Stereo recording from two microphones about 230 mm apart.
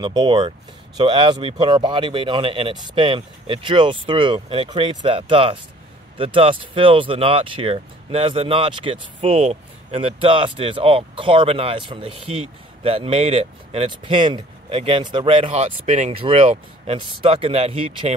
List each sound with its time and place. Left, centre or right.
0.0 s speech: centre